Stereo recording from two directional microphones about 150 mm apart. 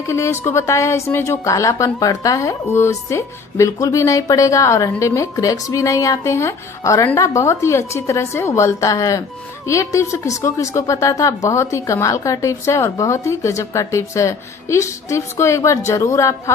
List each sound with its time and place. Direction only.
0.0 s a woman's voice: 20° left (ahead or behind)